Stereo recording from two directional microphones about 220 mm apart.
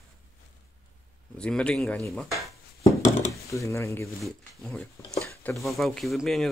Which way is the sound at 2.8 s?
35° left (ahead or behind).